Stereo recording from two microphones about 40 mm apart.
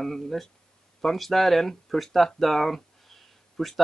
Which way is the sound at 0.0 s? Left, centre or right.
Centre.